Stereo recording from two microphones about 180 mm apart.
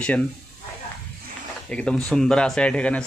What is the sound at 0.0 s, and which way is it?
Speech, 5° left (ahead or behind).